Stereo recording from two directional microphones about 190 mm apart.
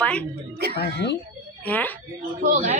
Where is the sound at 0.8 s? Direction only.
60° left (ahead or behind).